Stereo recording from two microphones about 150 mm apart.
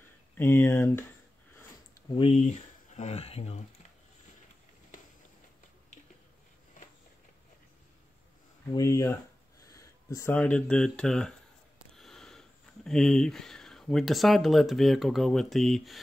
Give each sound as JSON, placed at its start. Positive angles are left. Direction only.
{"t": 0.4, "sound": "speech", "side_deg": 15}
{"t": 2.1, "sound": "speech", "side_deg": 40}
{"t": 8.7, "sound": "speech", "side_deg": 20}